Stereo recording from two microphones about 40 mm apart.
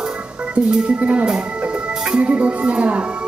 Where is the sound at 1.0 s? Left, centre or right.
Right.